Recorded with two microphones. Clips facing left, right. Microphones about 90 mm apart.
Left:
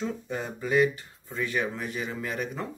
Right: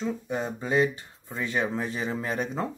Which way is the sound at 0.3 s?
20° right (ahead or behind).